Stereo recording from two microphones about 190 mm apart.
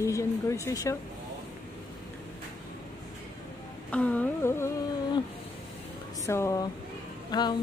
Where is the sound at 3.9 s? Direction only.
5° left (ahead or behind).